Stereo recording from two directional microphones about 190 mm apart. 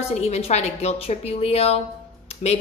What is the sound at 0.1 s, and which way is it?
A woman's voice, 35° left (ahead or behind).